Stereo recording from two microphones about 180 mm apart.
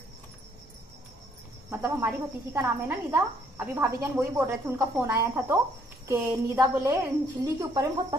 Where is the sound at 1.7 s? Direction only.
15° right (ahead or behind).